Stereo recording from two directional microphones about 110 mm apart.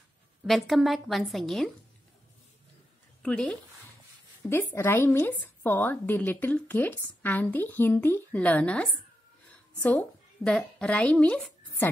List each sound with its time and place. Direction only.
0.5 s a woman's voice: centre (ahead or behind)
3.2 s speech: 10° left (ahead or behind)
4.4 s a woman's voice: 20° left (ahead or behind)